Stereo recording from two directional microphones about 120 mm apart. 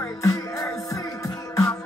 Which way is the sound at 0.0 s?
30° left (ahead or behind).